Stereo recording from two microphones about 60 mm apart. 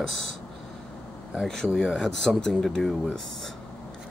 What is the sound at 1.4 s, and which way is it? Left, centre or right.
A man's voice, centre.